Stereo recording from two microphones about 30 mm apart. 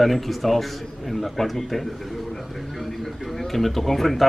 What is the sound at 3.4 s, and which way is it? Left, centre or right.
Speech, centre.